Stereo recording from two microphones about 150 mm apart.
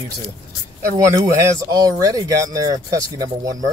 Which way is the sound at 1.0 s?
20° right (ahead or behind).